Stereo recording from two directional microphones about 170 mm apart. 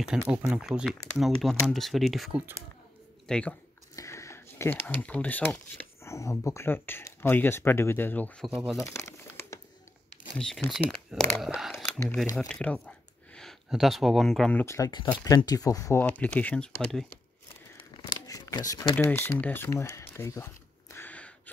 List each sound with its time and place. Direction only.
0.0 s speech: 5° right (ahead or behind)
3.9 s speech: 20° left (ahead or behind)
8.5 s speech: 5° right (ahead or behind)
8.7 s crumpling: 15° left (ahead or behind)
10.3 s speech: 5° left (ahead or behind)
17.7 s crumpling: 30° left (ahead or behind)
18.9 s speech: 15° left (ahead or behind)